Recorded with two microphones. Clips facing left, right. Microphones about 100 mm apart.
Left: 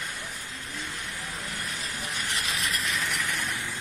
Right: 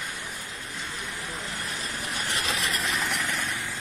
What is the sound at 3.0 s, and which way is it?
Vehicle, 50° right (ahead or behind).